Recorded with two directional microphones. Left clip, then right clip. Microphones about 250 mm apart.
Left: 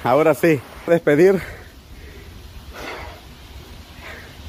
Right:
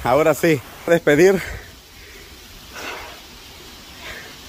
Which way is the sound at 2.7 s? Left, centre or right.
Centre.